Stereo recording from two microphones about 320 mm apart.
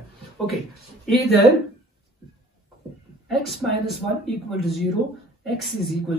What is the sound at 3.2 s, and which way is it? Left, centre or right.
Speech, centre.